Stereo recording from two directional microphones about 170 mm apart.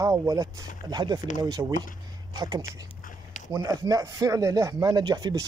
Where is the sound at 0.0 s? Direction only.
20° right (ahead or behind).